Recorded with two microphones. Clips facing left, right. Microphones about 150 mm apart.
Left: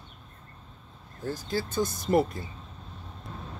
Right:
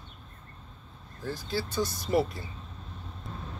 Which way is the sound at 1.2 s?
45° left (ahead or behind).